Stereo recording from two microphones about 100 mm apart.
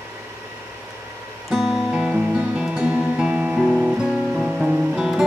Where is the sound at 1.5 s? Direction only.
5° right (ahead or behind).